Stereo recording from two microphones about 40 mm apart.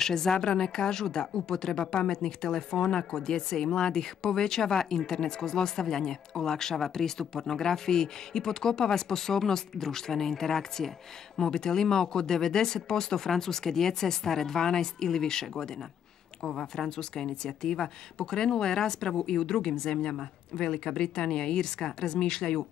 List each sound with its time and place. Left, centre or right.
0.0 s speech: centre